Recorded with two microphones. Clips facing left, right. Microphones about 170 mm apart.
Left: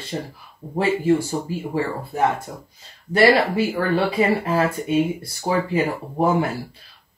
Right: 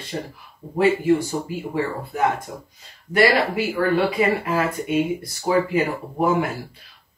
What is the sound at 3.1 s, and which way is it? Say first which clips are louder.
Speech: left 2 dB; 30° left (ahead or behind).